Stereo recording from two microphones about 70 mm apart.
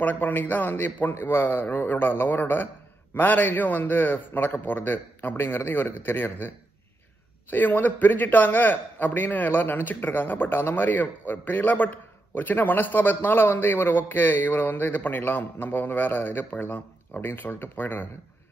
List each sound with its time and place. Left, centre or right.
0.0 s a man's voice: left